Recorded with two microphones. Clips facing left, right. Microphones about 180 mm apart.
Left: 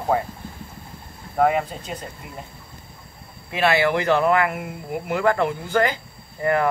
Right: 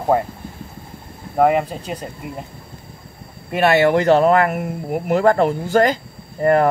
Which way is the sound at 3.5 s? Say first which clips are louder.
Right 5 dB; 45° right (ahead or behind).